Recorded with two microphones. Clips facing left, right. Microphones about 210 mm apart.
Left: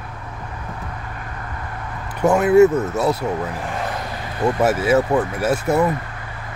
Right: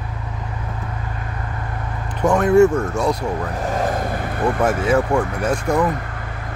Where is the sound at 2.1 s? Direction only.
5° left (ahead or behind).